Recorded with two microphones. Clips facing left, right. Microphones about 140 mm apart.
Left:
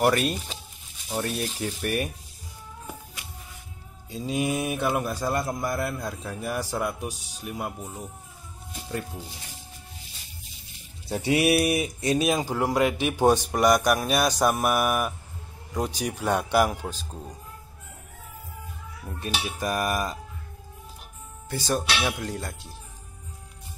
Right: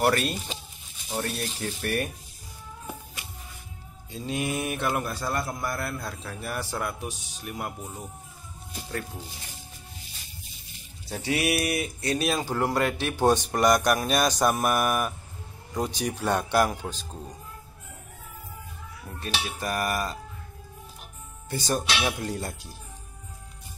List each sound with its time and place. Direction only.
0.0 s a man's voice: 10° left (ahead or behind)
4.1 s a man's voice: 5° left (ahead or behind)
11.1 s a man's voice: 25° left (ahead or behind); by 17.2 s 5° left (ahead or behind)
19.1 s a man's voice: 15° left (ahead or behind)
21.5 s speech: centre (ahead or behind)